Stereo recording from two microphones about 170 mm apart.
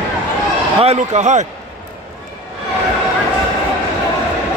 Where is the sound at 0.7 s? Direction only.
40° right (ahead or behind).